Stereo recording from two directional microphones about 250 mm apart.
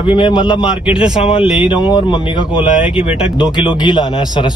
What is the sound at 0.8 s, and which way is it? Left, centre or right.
Speech, centre.